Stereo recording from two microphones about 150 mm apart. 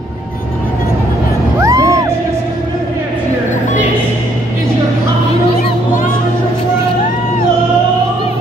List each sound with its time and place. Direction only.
1.6 s music: 20° right (ahead or behind)